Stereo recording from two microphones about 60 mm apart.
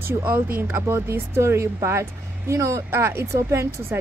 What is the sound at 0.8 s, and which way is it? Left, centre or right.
A woman's voice, right.